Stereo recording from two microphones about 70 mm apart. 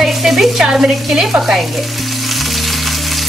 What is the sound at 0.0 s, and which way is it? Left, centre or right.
Frying, centre.